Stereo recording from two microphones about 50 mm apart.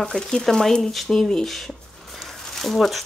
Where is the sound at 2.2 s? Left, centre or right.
Centre.